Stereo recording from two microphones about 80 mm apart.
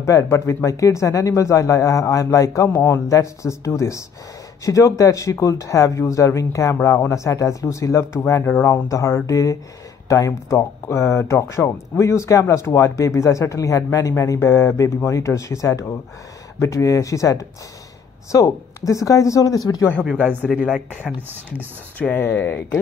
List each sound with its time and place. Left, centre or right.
0.0 s speech: left
20.4 s speech: centre
21.3 s speech: right
22.1 s speech: left